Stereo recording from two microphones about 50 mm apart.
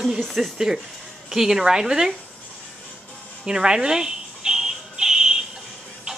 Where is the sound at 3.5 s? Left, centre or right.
Centre.